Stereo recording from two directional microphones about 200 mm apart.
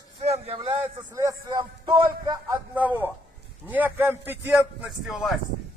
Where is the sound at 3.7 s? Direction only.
10° right (ahead or behind).